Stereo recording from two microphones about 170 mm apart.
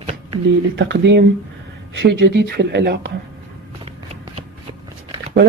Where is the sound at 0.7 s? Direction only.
90° right.